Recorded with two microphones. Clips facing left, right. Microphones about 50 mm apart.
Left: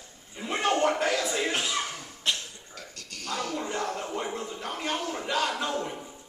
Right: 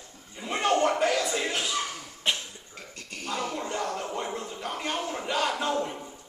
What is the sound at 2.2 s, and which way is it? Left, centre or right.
Cough, right.